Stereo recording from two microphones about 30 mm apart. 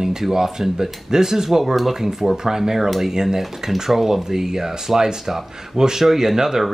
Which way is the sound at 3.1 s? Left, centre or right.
Centre.